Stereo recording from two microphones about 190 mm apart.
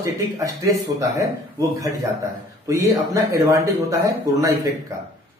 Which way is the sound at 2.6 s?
15° right (ahead or behind).